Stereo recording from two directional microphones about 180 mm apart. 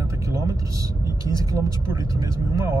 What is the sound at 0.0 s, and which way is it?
Speech, 20° right (ahead or behind).